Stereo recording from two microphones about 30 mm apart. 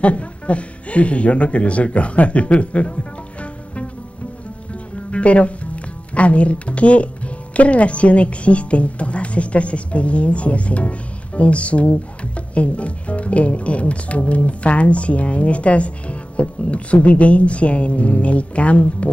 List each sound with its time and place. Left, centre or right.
0.0 s speech: left
5.1 s speech: left